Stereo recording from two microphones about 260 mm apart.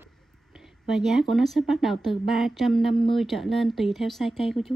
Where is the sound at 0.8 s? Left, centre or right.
Centre.